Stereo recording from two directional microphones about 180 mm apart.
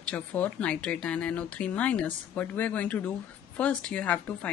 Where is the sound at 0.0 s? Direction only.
10° left (ahead or behind).